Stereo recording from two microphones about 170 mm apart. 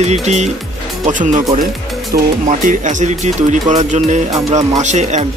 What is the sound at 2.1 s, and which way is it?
Speech, 60° right (ahead or behind).